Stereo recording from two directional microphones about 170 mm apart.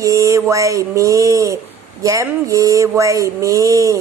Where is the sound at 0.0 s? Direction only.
20° right (ahead or behind).